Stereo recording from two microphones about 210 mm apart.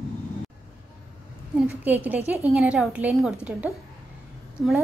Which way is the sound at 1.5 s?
10° right (ahead or behind).